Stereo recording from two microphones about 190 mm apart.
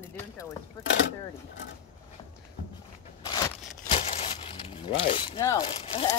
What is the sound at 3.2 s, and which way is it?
Scissors, 20° left (ahead or behind).